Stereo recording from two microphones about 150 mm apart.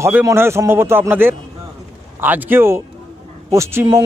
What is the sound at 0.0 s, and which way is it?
Speech, 15° right (ahead or behind).